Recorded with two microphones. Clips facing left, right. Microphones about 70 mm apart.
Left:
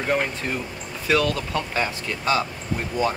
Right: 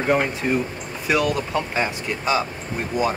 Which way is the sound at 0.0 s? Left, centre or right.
Centre.